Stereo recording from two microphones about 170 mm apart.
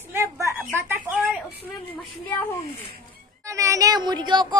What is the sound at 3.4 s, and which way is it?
Speech, 20° right (ahead or behind).